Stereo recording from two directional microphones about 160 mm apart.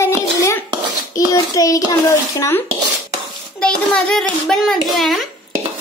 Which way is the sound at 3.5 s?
5° left (ahead or behind).